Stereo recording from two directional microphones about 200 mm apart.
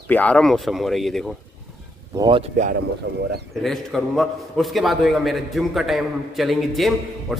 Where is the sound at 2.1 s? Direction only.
20° right (ahead or behind).